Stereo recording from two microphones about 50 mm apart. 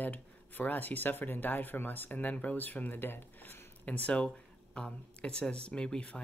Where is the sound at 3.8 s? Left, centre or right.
Left.